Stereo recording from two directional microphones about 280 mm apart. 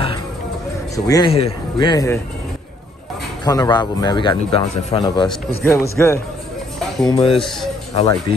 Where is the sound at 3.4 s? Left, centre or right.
Centre.